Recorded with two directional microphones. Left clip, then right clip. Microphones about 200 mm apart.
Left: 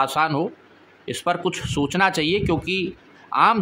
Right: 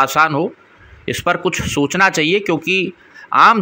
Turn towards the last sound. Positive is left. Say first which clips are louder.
# right 7 dB
turn(degrees=-15)  # may be behind; listen again after turning